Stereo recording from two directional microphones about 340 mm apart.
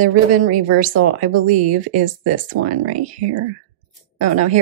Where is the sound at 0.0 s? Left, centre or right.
Right.